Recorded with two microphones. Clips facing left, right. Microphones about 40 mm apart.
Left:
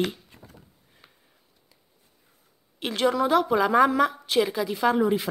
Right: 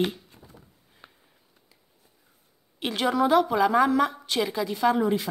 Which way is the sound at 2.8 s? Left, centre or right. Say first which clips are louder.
Even; centre.